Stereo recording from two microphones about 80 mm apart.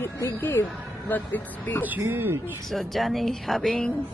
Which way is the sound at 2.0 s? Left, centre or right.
Right.